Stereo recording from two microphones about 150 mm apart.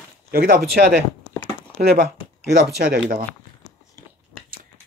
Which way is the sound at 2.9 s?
70° right (ahead or behind).